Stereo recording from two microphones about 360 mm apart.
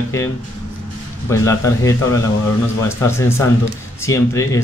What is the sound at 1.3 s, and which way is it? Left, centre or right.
Speech, centre.